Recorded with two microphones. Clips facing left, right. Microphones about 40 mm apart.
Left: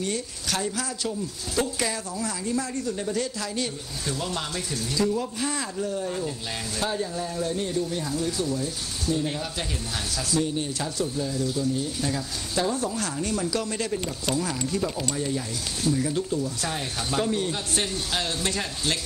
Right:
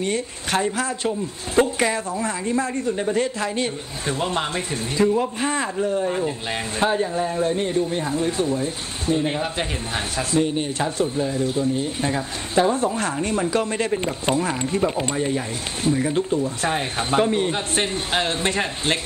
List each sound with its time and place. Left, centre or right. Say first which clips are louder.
0.0 s speech: right 5 dB; right